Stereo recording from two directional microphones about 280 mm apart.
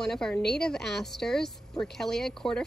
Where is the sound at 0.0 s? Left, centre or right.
Centre.